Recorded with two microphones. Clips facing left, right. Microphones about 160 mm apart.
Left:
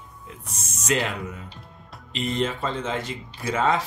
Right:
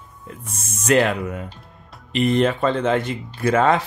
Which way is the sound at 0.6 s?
55° right (ahead or behind).